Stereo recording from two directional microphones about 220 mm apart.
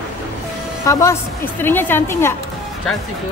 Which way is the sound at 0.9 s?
10° left (ahead or behind).